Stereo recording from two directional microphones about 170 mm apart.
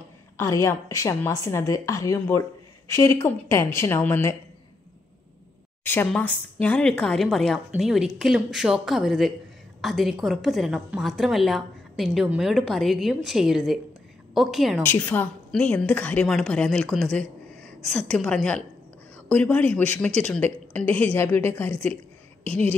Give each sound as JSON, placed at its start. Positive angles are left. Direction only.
{"t": 0.4, "sound": "a woman's voice", "side_deg": 15}
{"t": 5.9, "sound": "a woman's voice", "side_deg": 10}
{"t": 14.8, "sound": "a woman's voice", "side_deg": 10}